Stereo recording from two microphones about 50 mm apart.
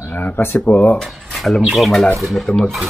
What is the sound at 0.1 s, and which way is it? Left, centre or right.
Speech, left.